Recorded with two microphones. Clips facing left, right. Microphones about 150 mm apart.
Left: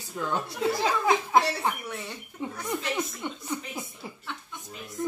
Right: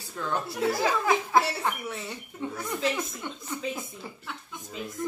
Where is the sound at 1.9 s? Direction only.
5° right (ahead or behind).